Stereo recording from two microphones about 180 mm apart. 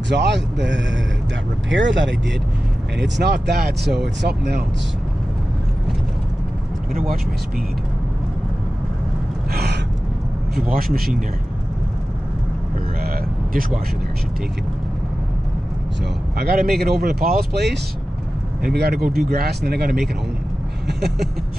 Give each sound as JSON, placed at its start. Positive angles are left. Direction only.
{"t": 0.1, "sound": "speech", "side_deg": -75}
{"t": 1.7, "sound": "speech", "side_deg": -90}
{"t": 3.0, "sound": "speech", "side_deg": -70}
{"t": 9.5, "sound": "gasp", "side_deg": -60}
{"t": 10.7, "sound": "speech", "side_deg": -55}
{"t": 13.0, "sound": "vehicle", "side_deg": -50}
{"t": 16.3, "sound": "speech", "side_deg": -60}